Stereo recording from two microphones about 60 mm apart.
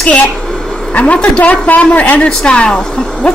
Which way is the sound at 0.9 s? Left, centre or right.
Left.